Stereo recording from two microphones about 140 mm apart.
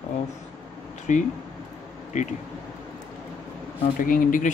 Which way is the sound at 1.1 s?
60° left (ahead or behind).